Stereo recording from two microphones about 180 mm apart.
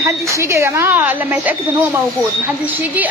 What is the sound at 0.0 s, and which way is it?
Speech, 15° right (ahead or behind).